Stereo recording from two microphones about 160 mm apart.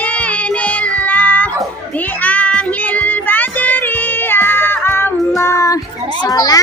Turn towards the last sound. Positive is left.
turn(degrees=25)  # may be behind; listen again after turning